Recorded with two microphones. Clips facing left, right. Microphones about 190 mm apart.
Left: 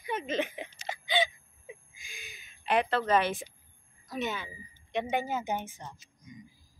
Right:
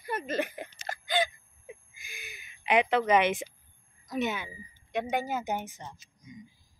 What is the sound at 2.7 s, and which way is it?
A woman's voice, 15° right (ahead or behind).